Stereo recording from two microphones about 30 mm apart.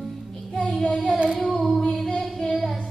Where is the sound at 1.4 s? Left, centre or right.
Centre.